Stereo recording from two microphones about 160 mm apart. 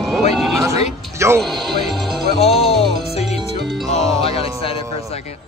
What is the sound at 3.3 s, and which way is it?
Music, 40° left (ahead or behind).